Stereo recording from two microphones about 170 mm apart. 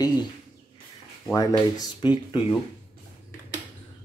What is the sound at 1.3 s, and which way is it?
Speech, 20° left (ahead or behind).